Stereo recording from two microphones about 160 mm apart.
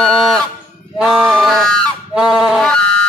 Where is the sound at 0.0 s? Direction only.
Centre (ahead or behind).